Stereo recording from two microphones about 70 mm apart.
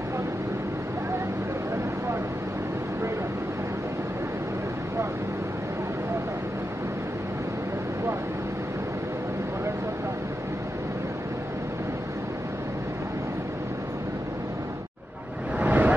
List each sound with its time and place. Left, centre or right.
15.6 s vehicle: right